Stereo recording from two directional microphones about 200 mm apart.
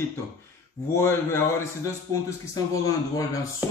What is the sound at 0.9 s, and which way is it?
A man's voice, 15° left (ahead or behind).